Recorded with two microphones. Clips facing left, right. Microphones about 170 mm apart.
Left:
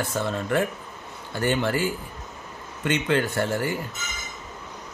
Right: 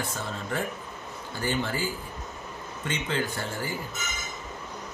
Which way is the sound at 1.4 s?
65° left (ahead or behind).